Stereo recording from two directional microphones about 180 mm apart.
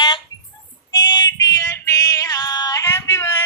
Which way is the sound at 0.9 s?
20° left (ahead or behind).